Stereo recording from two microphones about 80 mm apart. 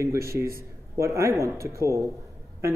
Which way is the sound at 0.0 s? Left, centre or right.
Right.